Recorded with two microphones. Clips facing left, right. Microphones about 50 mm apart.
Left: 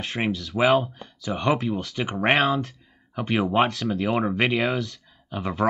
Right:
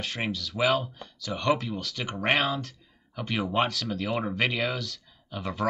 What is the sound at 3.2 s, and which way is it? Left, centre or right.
Speech, left.